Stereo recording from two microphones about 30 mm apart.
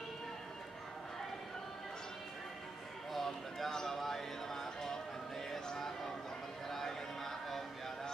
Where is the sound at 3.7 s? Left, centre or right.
Centre.